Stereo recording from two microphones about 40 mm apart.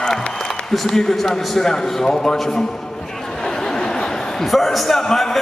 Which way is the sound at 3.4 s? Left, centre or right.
Centre.